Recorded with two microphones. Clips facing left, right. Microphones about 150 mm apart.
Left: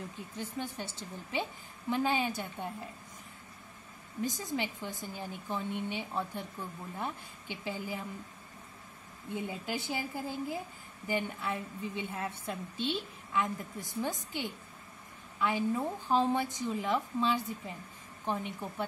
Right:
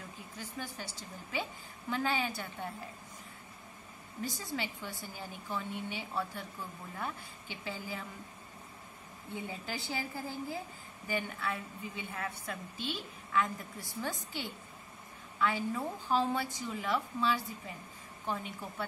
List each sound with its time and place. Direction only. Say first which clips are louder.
0.4 s a woman's voice: left 4 dB; 20° left (ahead or behind)
4.2 s a woman's voice: left 4 dB; 20° left (ahead or behind)
9.3 s a woman's voice: left 4 dB; 20° left (ahead or behind)